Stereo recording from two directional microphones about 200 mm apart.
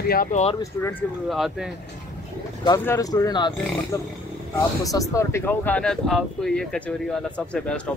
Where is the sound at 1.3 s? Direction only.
Centre (ahead or behind).